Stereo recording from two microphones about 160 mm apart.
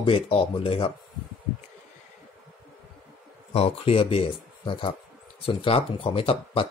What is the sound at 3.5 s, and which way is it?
Speech, 35° left (ahead or behind).